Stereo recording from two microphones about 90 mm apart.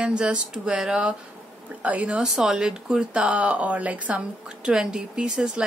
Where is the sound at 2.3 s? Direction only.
5° right (ahead or behind).